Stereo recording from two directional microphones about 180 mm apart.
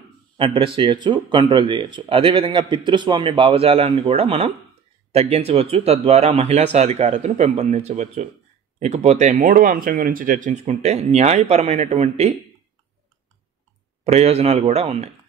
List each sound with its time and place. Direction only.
0.4 s speech: 30° right (ahead or behind)
14.0 s speech: 35° right (ahead or behind)